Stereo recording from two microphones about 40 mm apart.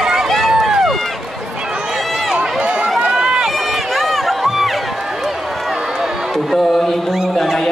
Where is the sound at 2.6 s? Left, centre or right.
Right.